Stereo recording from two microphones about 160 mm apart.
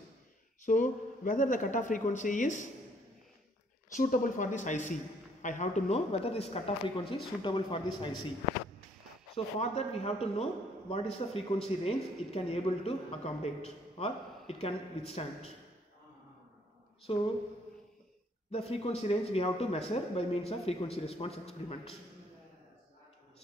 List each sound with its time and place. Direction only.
0.7 s a man's voice: 55° left (ahead or behind)
3.9 s a man's voice: 55° left (ahead or behind); by 8.3 s 30° left (ahead or behind)
9.3 s speech: 40° left (ahead or behind)
17.1 s speech: 35° left (ahead or behind)
18.5 s speech: 40° left (ahead or behind)